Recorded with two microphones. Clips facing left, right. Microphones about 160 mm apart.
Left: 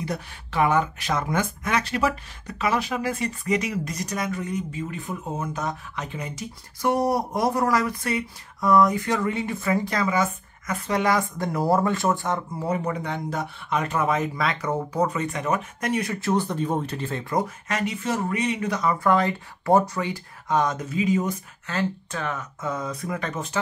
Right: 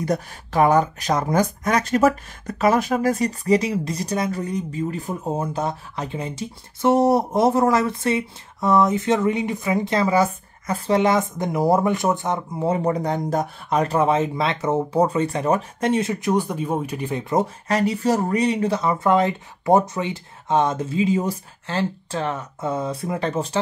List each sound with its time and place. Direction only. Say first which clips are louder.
0.0 s speech: right 7 dB; 40° right (ahead or behind); by 17.5 s 20° right (ahead or behind)
17.6 s speech: right 7 dB; 35° right (ahead or behind)